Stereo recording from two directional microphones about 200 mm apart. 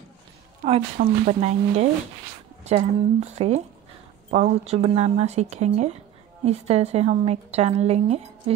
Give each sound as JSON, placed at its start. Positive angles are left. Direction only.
{"t": 0.7, "sound": "a woman's voice", "side_deg": -35}